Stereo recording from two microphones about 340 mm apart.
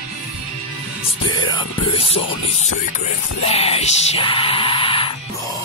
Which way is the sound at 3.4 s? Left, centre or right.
Centre.